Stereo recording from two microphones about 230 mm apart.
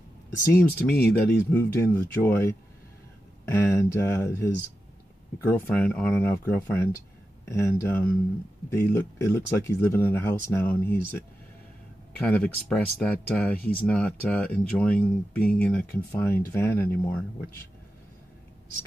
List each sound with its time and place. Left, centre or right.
0.5 s speech: centre